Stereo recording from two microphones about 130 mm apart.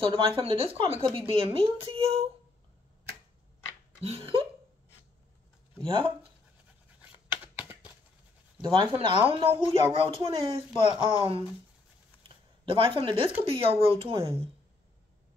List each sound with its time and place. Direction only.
0.0 s speech: 45° right (ahead or behind)
4.0 s a sound: 50° right (ahead or behind)
5.9 s speech: 40° right (ahead or behind)
8.5 s speech: 40° right (ahead or behind)
12.7 s speech: 40° right (ahead or behind)